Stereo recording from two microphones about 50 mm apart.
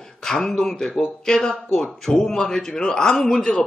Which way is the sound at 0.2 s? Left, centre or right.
Centre.